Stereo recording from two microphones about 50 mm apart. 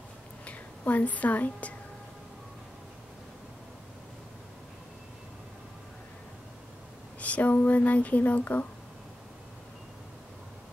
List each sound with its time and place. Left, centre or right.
0.5 s a woman's voice: left
7.2 s speech: left